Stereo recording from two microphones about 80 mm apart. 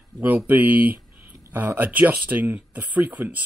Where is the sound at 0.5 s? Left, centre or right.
Right.